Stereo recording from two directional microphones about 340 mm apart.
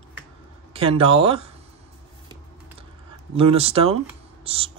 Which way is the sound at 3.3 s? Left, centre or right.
Centre.